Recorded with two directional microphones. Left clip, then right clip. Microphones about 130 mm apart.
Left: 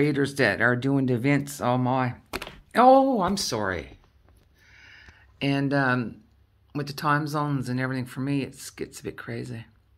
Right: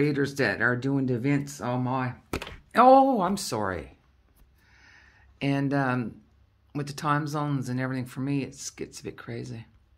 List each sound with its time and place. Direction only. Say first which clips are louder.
0.0 s speech: left 3 dB; 15° left (ahead or behind); by 2.1 s 40° left (ahead or behind)
2.3 s speech: right 1 dB; 10° left (ahead or behind); by 4.0 s 10° right (ahead or behind)
4.6 s a sound: left 5 dB; 10° right (ahead or behind)
5.1 s speech: left 2 dB; centre (ahead or behind)